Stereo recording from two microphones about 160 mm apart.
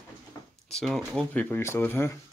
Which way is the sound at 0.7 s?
5° left (ahead or behind).